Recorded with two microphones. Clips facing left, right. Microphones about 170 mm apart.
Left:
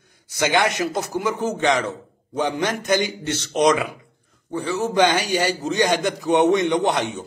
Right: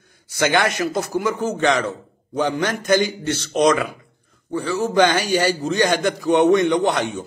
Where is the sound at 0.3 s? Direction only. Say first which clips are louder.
Right 1 dB; 20° left (ahead or behind).